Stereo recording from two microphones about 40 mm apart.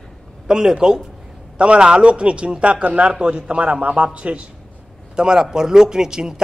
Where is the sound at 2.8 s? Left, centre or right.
Right.